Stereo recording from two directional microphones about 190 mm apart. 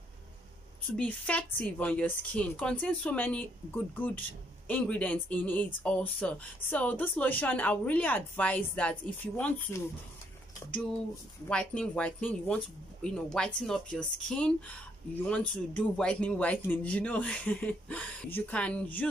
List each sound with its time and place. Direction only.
0.9 s speech: 5° left (ahead or behind)
11.4 s speech: 5° left (ahead or behind)
15.7 s speech: 5° left (ahead or behind)